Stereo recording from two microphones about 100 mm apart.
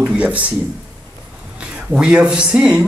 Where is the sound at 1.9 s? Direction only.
10° right (ahead or behind).